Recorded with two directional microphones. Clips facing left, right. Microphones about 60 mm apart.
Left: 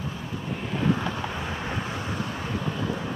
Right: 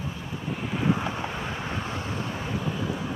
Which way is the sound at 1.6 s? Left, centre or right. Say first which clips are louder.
Left 1 dB; centre.